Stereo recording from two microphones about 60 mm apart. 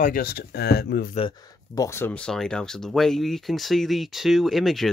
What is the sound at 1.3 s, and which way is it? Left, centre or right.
Speech, left.